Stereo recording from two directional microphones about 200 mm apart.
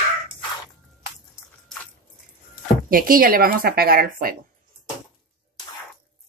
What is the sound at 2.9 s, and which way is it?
Speech, 45° right (ahead or behind).